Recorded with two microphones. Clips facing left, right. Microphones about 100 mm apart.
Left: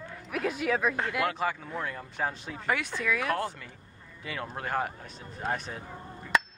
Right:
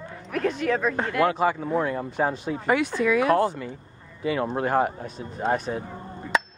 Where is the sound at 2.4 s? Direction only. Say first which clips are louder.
Right 8 dB; 10° right (ahead or behind).